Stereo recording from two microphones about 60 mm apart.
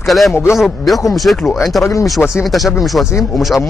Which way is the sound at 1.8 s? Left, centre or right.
Left.